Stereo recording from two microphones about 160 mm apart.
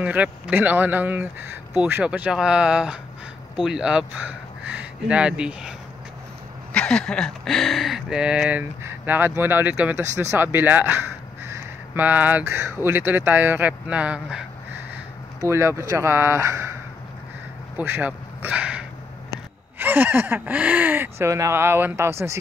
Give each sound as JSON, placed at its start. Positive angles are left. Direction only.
{"t": 0.0, "sound": "speech", "side_deg": -10}
{"t": 6.7, "sound": "speech", "side_deg": 5}
{"t": 15.4, "sound": "speech", "side_deg": -15}
{"t": 17.7, "sound": "a sound", "side_deg": -10}
{"t": 19.8, "sound": "speech", "side_deg": -10}